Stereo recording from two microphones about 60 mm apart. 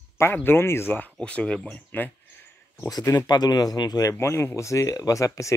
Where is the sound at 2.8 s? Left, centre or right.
Left.